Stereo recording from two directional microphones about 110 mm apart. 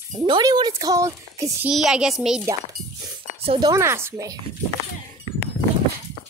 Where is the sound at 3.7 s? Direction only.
25° right (ahead or behind).